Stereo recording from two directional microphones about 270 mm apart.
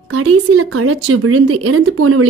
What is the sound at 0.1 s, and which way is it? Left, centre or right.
A woman's voice, right.